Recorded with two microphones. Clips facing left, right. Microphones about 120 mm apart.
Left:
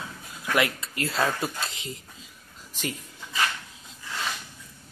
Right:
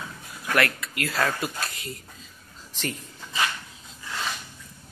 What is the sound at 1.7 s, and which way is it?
Speech, 90° left.